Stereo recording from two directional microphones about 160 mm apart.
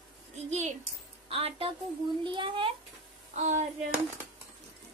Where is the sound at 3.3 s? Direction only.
45° right (ahead or behind).